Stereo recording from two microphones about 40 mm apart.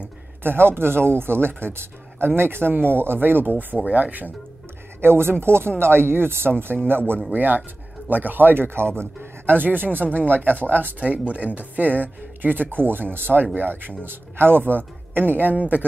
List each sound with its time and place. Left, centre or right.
0.4 s speech: right
3.8 s speech: right
5.0 s speech: right
7.3 s speech: right
8.9 s speech: right
9.5 s speech: right
14.0 s speech: right
15.5 s speech: right